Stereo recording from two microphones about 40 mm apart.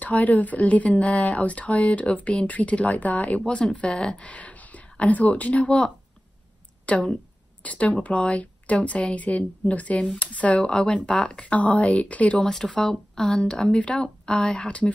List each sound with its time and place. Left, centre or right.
0.0 s speech: left
3.4 s speech: left
4.3 s a sound: left
4.8 s speech: left
6.9 s speech: left
10.6 s speech: left
11.5 s speech: left
12.4 s speech: centre